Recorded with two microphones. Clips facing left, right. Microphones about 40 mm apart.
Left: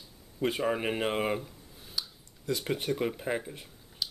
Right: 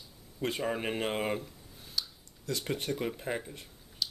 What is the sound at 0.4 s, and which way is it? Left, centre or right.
Speech, centre.